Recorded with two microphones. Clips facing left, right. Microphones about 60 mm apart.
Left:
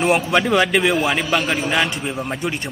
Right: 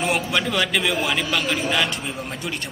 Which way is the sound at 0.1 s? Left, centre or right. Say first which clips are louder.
Left 6 dB; left.